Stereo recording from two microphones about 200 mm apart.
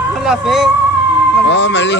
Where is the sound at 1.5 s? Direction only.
60° left (ahead or behind).